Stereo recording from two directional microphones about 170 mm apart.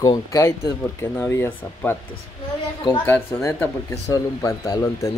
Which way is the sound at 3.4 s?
15° left (ahead or behind).